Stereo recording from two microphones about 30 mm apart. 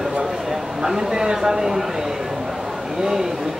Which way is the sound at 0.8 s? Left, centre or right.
Right.